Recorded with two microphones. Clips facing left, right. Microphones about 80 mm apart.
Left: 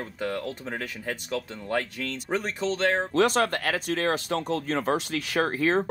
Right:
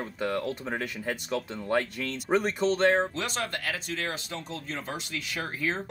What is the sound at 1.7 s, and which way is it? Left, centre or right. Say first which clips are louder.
Speech: right 1 dB; centre.